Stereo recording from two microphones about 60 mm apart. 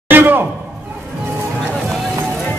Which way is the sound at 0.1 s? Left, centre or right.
Right.